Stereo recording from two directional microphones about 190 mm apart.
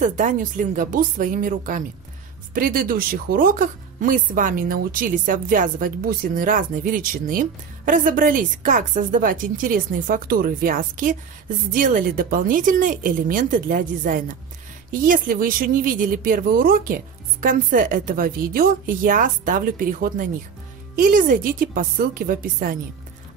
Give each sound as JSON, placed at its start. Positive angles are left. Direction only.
{"t": 0.0, "sound": "speech", "side_deg": -40}